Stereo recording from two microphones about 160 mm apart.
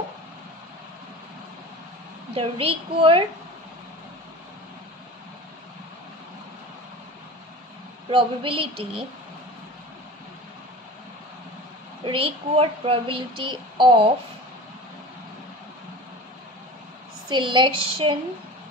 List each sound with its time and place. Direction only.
2.3 s speech: 35° right (ahead or behind)
8.1 s speech: 30° right (ahead or behind)
12.0 s speech: 35° right (ahead or behind)
17.3 s speech: 30° right (ahead or behind)